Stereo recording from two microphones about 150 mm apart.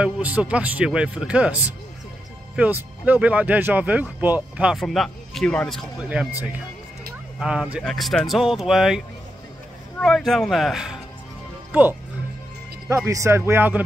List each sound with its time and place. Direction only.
0.0 s speech: 10° right (ahead or behind); by 5.8 s 5° left (ahead or behind)
5.9 s speech: 10° right (ahead or behind)
7.3 s speech: 5° right (ahead or behind)
12.9 s speech: 20° right (ahead or behind)